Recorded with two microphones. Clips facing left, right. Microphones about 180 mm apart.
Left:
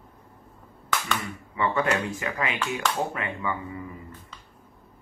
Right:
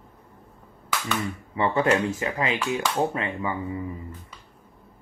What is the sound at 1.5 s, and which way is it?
Speech, 30° right (ahead or behind).